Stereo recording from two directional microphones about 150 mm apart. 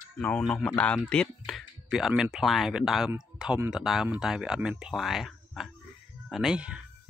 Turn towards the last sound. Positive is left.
turn(degrees=-5)  # may be behind; listen again after turning